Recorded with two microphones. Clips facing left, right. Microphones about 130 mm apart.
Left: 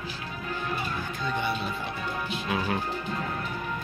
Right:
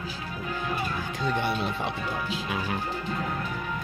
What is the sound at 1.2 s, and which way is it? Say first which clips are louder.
Speech: right 3 dB; 85° right.